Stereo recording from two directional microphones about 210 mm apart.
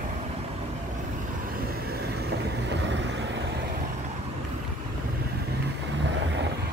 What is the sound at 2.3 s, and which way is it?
Vehicle, 55° right (ahead or behind).